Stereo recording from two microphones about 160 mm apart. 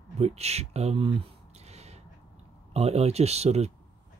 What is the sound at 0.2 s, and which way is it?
Speech, 40° right (ahead or behind).